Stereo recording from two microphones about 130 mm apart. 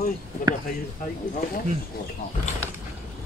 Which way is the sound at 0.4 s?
90° left.